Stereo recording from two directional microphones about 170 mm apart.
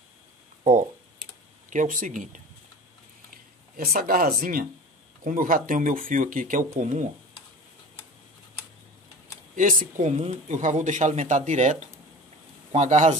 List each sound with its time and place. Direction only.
1.7 s speech: 50° right (ahead or behind)
3.3 s speech: 60° right (ahead or behind)
9.6 s speech: 50° right (ahead or behind)